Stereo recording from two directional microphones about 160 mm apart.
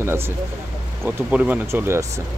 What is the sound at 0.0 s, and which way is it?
Speech, 15° right (ahead or behind).